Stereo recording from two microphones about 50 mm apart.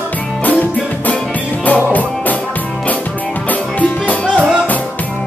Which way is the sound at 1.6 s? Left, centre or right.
Left.